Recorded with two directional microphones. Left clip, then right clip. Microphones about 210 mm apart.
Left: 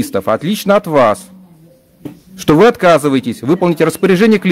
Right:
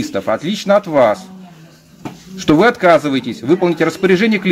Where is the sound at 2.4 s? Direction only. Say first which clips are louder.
Left 3 dB; 50° left (ahead or behind).